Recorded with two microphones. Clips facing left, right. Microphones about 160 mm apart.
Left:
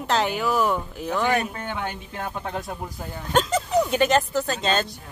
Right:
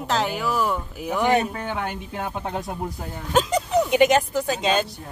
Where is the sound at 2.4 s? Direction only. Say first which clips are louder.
Even; 20° right (ahead or behind).